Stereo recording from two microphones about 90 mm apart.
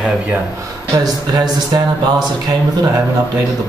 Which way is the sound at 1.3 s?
50° right (ahead or behind).